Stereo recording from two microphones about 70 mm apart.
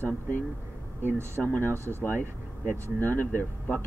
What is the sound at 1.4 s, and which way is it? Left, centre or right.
Speech, left.